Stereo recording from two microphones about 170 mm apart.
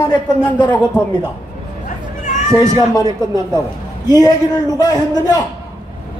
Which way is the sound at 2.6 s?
25° left (ahead or behind).